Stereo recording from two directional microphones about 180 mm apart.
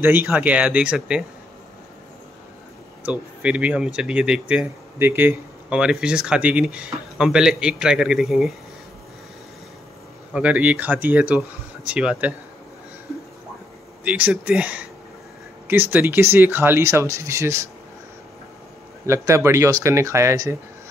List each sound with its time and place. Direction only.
0.0 s speech: 10° right (ahead or behind)
3.0 s speech: 5° right (ahead or behind)
10.3 s speech: 10° right (ahead or behind)
14.0 s speech: 5° right (ahead or behind)
19.0 s speech: 15° right (ahead or behind)